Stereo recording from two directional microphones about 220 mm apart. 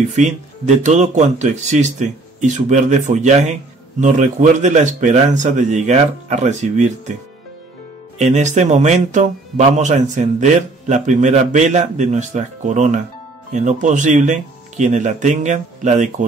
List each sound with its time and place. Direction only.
0.2 s a man's voice: 30° right (ahead or behind)
8.2 s a man's voice: 30° right (ahead or behind)